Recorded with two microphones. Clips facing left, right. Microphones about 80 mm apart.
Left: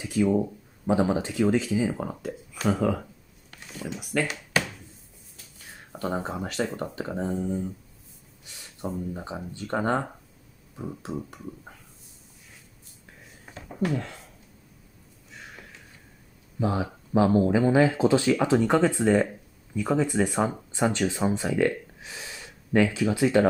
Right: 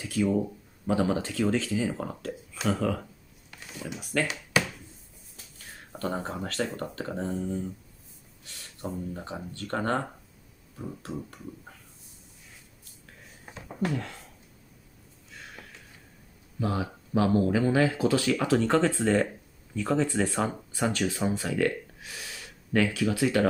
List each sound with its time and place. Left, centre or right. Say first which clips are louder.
0.0 s speech: left 3 dB; centre
4.0 s speech: left 1 dB; centre
5.9 s speech: left 2 dB; centre
9.1 s speech: left 2 dB; centre
16.5 s speech: left 3 dB; left
20.7 s speech: left 3 dB; left